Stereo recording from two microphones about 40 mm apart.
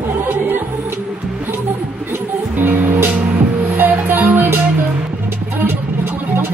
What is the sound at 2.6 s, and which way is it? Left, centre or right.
Music, right.